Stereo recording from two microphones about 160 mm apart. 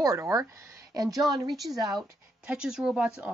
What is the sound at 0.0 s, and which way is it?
Speech, 20° right (ahead or behind).